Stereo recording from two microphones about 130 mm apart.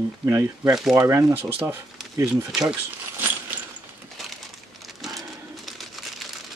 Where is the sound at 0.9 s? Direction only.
25° right (ahead or behind).